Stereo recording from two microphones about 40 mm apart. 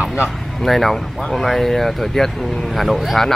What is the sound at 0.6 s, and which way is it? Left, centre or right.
Speech, centre.